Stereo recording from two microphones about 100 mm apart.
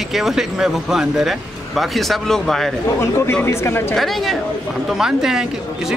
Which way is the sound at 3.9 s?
Centre (ahead or behind).